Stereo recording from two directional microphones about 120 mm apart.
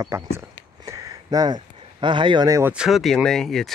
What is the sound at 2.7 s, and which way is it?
Speech, 5° right (ahead or behind).